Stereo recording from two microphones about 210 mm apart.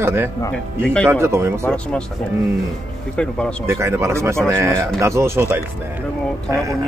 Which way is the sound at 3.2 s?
5° left (ahead or behind).